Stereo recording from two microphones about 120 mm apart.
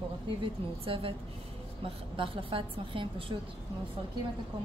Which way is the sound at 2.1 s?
45° right (ahead or behind).